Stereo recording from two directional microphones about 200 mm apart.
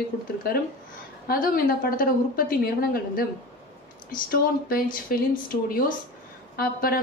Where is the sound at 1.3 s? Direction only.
45° left (ahead or behind).